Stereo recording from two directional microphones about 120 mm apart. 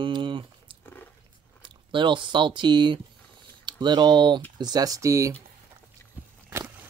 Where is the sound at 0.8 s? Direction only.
15° left (ahead or behind).